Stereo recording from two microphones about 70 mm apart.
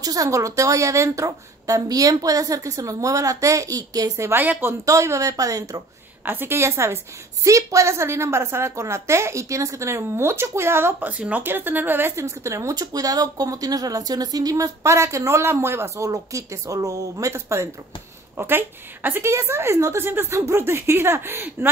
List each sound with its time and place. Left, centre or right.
0.0 s a woman's voice: right
4.4 s speech: right
4.8 s a woman's voice: right
6.2 s a woman's voice: right
11.1 s speech: centre
12.3 s a woman's voice: right
12.7 s a woman's voice: right
16.1 s a woman's voice: right
18.3 s a woman's voice: right